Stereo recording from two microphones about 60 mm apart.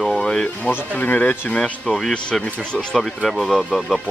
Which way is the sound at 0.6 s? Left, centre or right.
Left.